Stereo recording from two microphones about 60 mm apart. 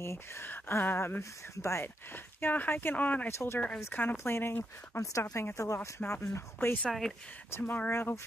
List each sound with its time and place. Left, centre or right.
0.0 s speech: left
1.5 s speech: left
2.1 s speech: left
3.0 s speech: left
3.3 s speech: left
3.9 s speech: left
5.2 s speech: left
5.9 s speech: left
6.2 s speech: left
6.9 s speech: centre
7.5 s speech: left